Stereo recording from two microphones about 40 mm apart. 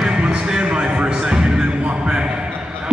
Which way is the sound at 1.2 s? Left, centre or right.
Right.